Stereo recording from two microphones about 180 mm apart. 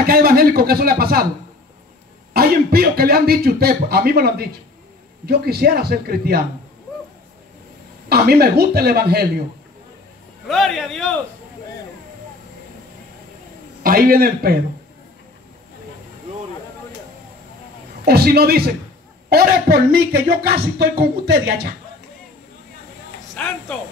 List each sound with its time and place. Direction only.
0.0 s speech: 55° right (ahead or behind)
2.3 s speech: 60° right (ahead or behind)
8.1 s speech: 60° right (ahead or behind)
10.5 s a man's voice: centre (ahead or behind)
13.8 s a man's voice: 55° right (ahead or behind)
18.0 s speech: 60° right (ahead or behind)
23.3 s a woman's voice: 5° left (ahead or behind)